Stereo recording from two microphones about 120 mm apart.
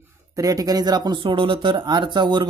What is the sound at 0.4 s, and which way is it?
Speech, 30° right (ahead or behind).